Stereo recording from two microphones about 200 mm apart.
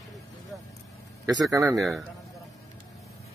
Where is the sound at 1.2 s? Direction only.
15° right (ahead or behind).